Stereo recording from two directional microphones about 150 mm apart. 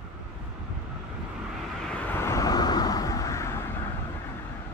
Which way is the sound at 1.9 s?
10° left (ahead or behind).